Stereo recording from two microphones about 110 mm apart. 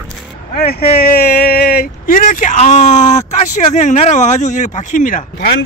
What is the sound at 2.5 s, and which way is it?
Speech, 90° left.